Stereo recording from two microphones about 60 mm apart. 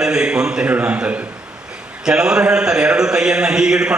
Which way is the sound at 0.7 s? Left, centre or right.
Right.